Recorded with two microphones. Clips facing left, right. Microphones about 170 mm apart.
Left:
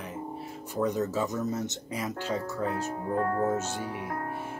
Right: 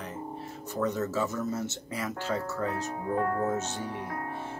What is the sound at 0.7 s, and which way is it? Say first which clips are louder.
Speech: left 1 dB; 15° left (ahead or behind).